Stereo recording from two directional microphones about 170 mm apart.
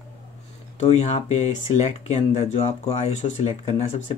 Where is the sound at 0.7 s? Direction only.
40° left (ahead or behind).